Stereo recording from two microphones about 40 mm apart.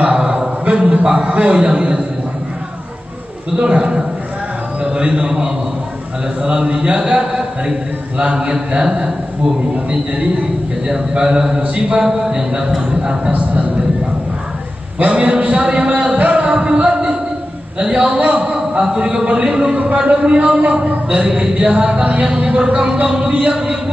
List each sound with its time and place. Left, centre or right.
0.1 s a sound: centre
0.7 s a man's voice: right
3.6 s a man's voice: right
10.9 s speech: centre
15.0 s a man's voice: right
16.3 s a sound: right
17.7 s a man's voice: centre
18.1 s a man's voice: right
18.4 s a man's voice: right
19.7 s a man's voice: right
20.0 s a man's voice: right